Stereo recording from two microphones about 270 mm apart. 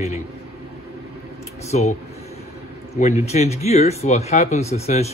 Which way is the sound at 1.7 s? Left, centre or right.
Left.